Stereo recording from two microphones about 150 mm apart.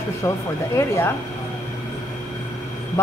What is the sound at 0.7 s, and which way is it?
Speech, 15° left (ahead or behind).